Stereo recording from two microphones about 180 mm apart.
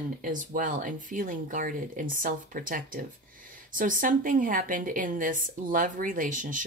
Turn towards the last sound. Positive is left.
turn(degrees=-45)  # may be behind; listen again after turning